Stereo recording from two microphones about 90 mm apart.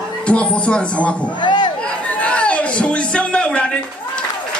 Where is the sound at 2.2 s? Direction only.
15° left (ahead or behind).